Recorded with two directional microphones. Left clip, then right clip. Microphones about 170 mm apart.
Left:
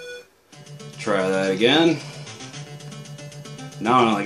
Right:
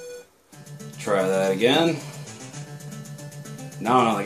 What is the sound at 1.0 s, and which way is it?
Speech, 25° left (ahead or behind).